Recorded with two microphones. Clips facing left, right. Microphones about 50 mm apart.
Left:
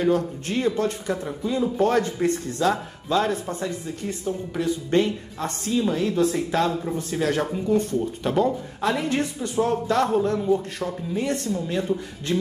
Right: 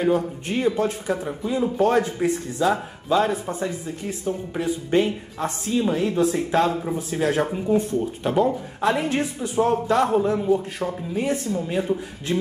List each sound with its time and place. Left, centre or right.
0.0 s a man's voice: centre
6.8 s a man's voice: centre
8.8 s a man's voice: right